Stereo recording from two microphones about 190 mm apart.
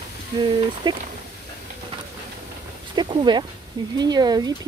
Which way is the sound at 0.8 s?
20° right (ahead or behind).